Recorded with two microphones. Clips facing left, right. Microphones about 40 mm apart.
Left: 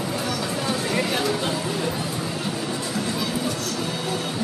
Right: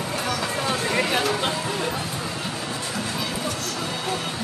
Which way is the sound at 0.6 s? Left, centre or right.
Centre.